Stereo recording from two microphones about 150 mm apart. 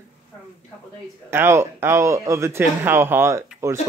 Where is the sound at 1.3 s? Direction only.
15° right (ahead or behind).